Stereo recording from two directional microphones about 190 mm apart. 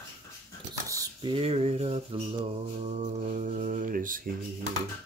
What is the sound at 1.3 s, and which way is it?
Mantra, 30° right (ahead or behind).